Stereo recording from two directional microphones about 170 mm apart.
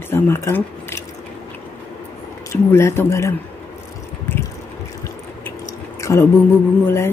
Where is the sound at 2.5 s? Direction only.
15° left (ahead or behind).